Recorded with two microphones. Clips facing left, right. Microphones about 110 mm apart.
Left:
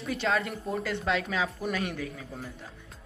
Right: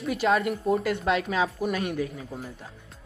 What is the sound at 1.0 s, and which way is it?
Speech, 20° right (ahead or behind).